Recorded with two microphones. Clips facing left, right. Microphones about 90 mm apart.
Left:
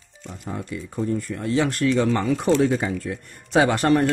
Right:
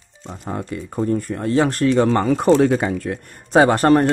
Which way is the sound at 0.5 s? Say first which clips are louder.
Right 4 dB; 55° right (ahead or behind).